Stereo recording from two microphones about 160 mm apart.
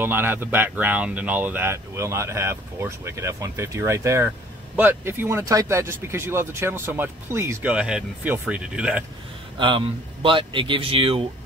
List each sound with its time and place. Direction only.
0.0 s speech: 15° right (ahead or behind)
9.6 s speech: 30° right (ahead or behind)